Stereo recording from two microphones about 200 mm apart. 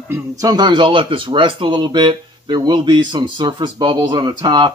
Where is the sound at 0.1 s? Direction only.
20° right (ahead or behind).